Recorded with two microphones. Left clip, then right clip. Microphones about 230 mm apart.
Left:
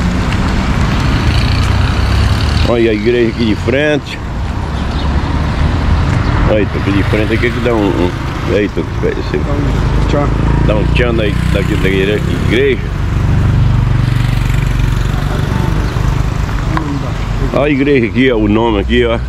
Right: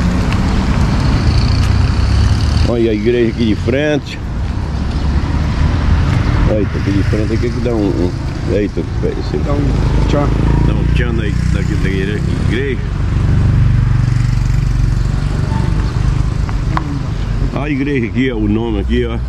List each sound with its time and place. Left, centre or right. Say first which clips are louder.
0.0 s vehicle: left 2 dB; centre
2.6 s speech: left 3 dB; centre
6.0 s vehicle: left 4 dB; centre
7.2 s speech: left 5 dB; centre
10.1 s speech: left 1 dB; centre
17.6 s speech: left 5 dB; centre